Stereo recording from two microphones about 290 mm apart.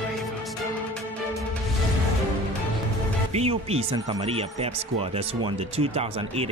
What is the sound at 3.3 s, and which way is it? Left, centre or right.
Speech, right.